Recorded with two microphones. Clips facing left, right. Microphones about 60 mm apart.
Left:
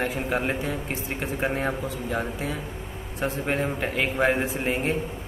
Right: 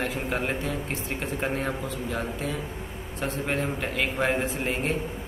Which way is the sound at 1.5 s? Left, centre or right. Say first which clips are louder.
Left 3 dB; centre.